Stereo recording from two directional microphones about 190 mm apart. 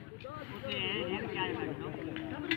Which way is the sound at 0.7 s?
35° right (ahead or behind).